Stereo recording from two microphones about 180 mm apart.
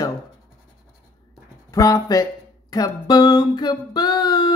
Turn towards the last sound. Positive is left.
turn(degrees=20)  # may be behind; listen again after turning